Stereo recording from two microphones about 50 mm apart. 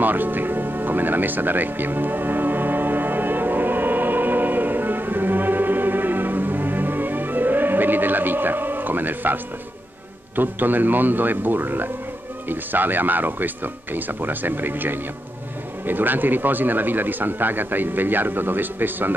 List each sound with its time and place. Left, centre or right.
0.0 s music: right
10.3 s a man's voice: right